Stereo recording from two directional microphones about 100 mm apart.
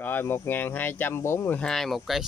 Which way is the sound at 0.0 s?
20° left (ahead or behind).